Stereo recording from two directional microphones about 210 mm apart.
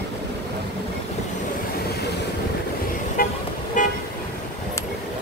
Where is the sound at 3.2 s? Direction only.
45° left (ahead or behind).